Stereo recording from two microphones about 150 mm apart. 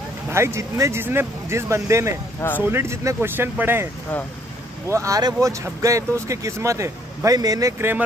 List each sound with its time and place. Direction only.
0.3 s speech: 20° right (ahead or behind)